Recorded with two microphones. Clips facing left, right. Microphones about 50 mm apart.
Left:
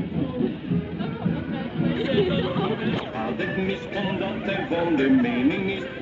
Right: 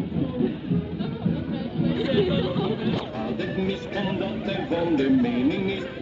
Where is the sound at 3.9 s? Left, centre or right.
Left.